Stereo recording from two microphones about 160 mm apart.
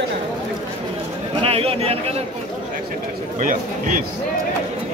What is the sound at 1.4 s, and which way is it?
Speech, 40° right (ahead or behind).